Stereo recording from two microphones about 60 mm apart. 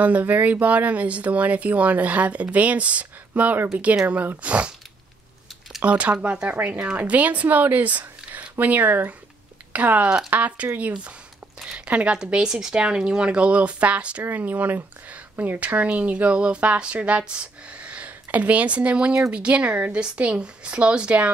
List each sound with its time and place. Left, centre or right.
0.0 s speech: right
5.8 s speech: right
10.0 s speech: centre
10.3 s speech: right